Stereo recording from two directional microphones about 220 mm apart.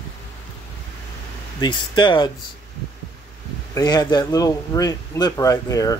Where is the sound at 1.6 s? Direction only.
20° left (ahead or behind).